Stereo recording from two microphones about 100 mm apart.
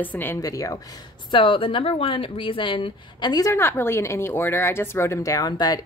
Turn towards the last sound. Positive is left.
turn(degrees=40)  # may be behind; listen again after turning